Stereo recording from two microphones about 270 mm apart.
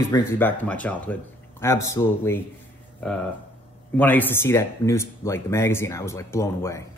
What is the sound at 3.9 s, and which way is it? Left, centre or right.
Speech, centre.